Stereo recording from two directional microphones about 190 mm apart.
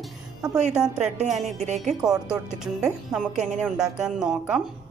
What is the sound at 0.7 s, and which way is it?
Speech, 5° right (ahead or behind).